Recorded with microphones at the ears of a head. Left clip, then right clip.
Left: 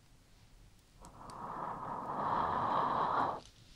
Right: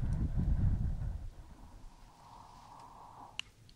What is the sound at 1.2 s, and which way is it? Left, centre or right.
Vehicle, left.